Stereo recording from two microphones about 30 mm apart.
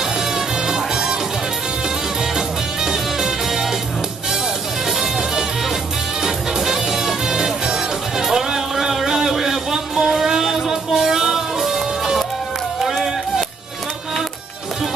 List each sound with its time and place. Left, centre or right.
0.0 s music: centre
2.3 s music: centre
4.8 s music: centre